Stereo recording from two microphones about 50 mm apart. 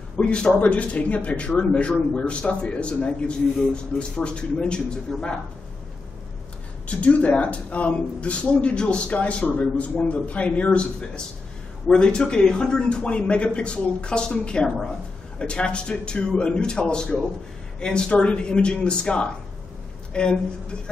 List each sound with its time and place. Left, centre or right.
0.2 s a man's voice: centre
0.6 s a man's voice: left
6.9 s a man's voice: left
20.1 s a sound: centre